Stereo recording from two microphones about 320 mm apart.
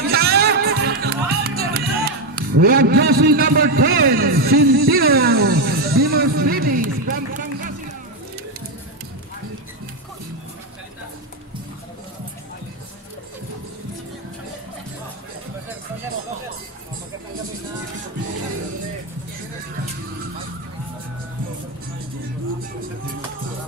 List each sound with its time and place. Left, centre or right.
0.0 s music: right